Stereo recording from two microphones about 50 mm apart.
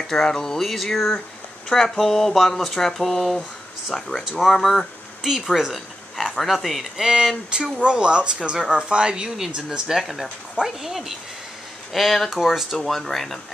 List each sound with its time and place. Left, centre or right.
0.0 s speech: centre